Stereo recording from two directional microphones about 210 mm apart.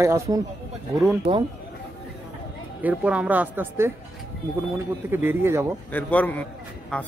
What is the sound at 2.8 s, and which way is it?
Speech, 5° right (ahead or behind).